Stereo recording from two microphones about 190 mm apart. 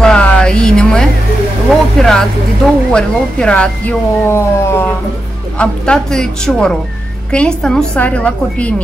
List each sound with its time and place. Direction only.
0.0 s a sound: 5° left (ahead or behind)
1.7 s vehicle: centre (ahead or behind)
2.9 s a woman's voice: 5° left (ahead or behind)